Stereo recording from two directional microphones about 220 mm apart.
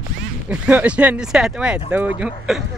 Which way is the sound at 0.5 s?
5° right (ahead or behind).